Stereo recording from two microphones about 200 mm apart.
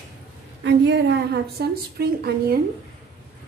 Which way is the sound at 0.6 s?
60° right (ahead or behind).